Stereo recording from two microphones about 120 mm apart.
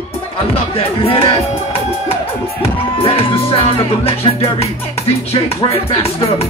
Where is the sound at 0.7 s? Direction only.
50° left (ahead or behind).